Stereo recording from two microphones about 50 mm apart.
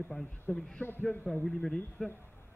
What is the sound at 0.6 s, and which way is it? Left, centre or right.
Speech, centre.